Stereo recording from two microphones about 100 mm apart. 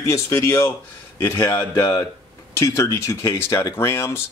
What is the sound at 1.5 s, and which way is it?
Speech, 40° left (ahead or behind).